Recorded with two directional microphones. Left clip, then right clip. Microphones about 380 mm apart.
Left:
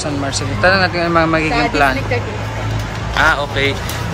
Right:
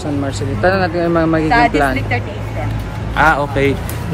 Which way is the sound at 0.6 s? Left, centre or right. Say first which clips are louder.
Left 2 dB; centre.